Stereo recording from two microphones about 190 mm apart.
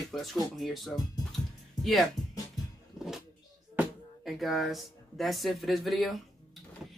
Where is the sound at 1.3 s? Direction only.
Centre (ahead or behind).